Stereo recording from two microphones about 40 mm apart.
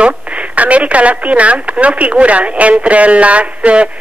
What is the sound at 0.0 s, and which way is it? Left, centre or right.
Speech, right.